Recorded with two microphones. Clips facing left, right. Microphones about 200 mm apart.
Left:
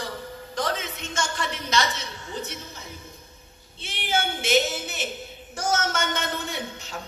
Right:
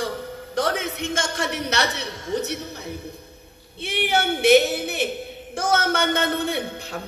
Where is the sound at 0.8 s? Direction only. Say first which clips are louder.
Right 5 dB; 60° right (ahead or behind).